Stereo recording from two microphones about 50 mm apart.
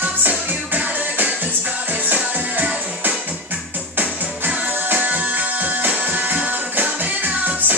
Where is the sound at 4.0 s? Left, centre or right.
Right.